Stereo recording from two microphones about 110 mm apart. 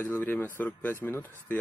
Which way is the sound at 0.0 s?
15° left (ahead or behind).